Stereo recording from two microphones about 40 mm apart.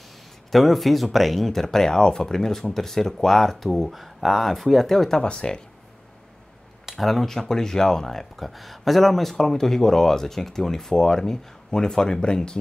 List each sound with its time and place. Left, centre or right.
0.5 s speech: centre
5.2 s speech: left
6.9 s speech: centre
7.3 s speech: centre